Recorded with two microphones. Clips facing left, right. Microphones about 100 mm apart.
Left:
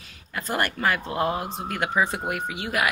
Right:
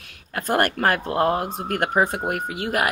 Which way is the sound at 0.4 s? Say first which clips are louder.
Right 5 dB; 50° right (ahead or behind).